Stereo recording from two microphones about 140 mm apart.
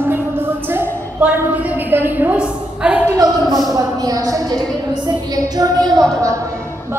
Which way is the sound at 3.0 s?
25° right (ahead or behind).